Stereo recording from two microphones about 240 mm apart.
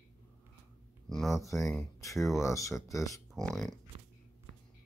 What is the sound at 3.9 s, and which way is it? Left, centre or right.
Biting, right.